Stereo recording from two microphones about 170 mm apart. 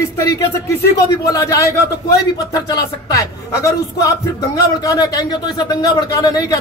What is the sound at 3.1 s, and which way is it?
A man's voice, 20° left (ahead or behind).